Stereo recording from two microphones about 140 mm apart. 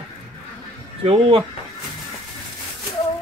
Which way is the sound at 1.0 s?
45° right (ahead or behind).